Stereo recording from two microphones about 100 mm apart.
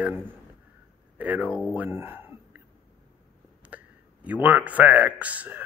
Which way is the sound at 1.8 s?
20° right (ahead or behind).